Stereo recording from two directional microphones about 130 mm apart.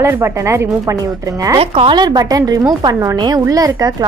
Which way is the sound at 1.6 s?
50° right (ahead or behind).